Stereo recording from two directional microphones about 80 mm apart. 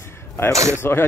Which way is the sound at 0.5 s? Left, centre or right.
Right.